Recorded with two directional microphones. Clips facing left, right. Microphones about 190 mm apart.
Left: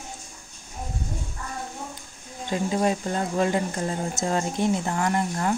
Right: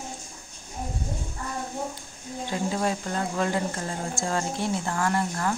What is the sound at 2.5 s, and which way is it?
Speech, 20° left (ahead or behind).